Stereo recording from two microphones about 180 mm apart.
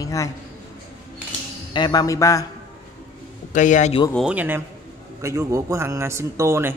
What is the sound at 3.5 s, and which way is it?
Speech, 45° left (ahead or behind).